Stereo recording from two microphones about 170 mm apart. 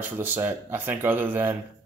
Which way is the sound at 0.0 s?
10° right (ahead or behind).